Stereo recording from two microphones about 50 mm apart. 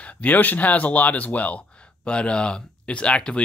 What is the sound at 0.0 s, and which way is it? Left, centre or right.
Speech, left.